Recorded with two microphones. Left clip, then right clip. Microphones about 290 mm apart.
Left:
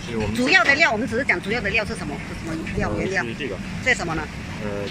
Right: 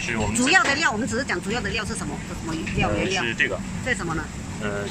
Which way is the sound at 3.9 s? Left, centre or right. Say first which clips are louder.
Left 6 dB; centre.